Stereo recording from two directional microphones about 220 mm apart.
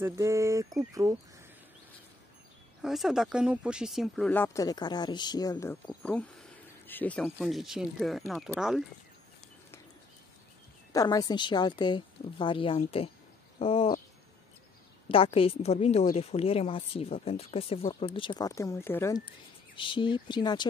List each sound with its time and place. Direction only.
0.0 s speech: 15° right (ahead or behind)
2.8 s speech: centre (ahead or behind)
10.9 s a woman's voice: 15° left (ahead or behind)
13.6 s owl: 25° left (ahead or behind)
15.0 s a woman's voice: 25° left (ahead or behind)
19.7 s a woman's voice: 20° left (ahead or behind)